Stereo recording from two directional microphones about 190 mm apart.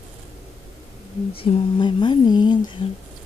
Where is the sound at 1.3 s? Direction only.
30° left (ahead or behind).